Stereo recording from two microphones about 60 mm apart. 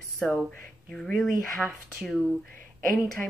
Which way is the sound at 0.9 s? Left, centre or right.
Centre.